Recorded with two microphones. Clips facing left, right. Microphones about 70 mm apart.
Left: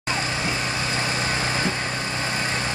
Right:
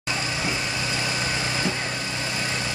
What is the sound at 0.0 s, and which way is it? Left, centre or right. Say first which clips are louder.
Vehicle: left 2 dB; left.